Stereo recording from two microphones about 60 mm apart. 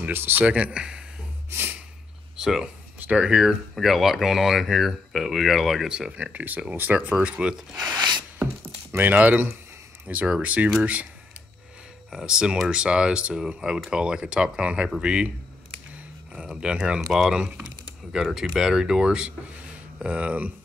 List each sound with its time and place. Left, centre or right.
0.1 s speech: right; by 1.0 s centre
1.5 s snort: right
2.3 s speech: centre
3.7 s speech: centre
8.6 s speech: right
12.1 s speech: centre
16.3 s speech: centre